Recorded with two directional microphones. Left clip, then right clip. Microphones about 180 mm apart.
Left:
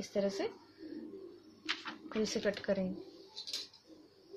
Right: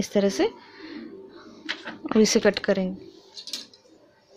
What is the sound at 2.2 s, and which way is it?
Speech, 65° right (ahead or behind).